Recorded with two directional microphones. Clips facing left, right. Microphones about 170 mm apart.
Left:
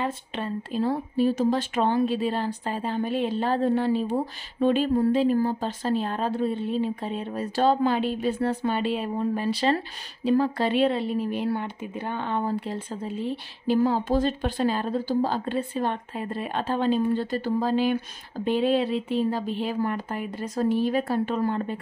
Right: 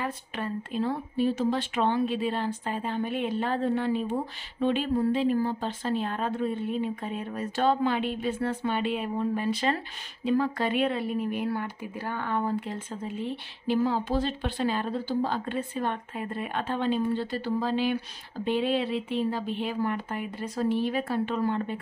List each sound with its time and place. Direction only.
0.0 s speech: 30° left (ahead or behind)